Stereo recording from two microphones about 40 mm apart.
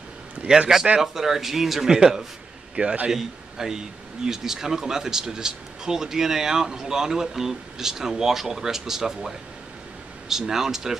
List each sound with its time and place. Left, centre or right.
0.4 s a sound: right
1.0 s speech: centre
2.7 s a man's voice: right
3.1 s speech: centre